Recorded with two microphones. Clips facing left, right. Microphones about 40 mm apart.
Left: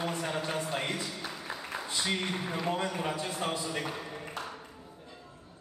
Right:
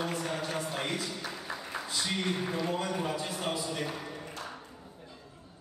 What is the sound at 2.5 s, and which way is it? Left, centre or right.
Speech, left.